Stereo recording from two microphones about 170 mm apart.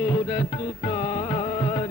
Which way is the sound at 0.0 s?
35° left (ahead or behind).